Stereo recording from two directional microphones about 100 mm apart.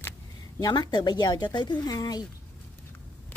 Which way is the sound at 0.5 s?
40° left (ahead or behind).